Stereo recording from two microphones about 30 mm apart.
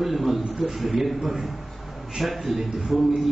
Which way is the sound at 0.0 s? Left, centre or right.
Centre.